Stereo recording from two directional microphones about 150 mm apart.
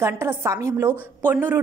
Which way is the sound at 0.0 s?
15° right (ahead or behind).